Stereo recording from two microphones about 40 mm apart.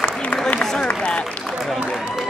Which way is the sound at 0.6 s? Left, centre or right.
Centre.